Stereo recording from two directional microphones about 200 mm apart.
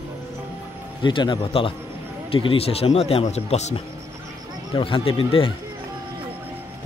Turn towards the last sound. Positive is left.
turn(degrees=25)  # may be behind; listen again after turning